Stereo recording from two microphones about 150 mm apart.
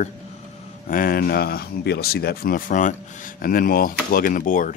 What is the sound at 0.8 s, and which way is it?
Speech, 70° left (ahead or behind).